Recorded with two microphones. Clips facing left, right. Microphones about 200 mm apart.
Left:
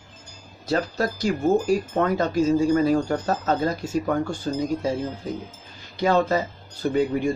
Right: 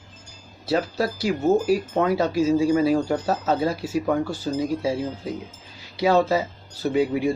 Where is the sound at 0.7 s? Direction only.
10° right (ahead or behind).